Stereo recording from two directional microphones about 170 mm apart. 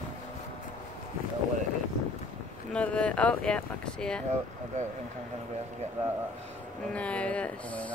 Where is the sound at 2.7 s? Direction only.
5° left (ahead or behind).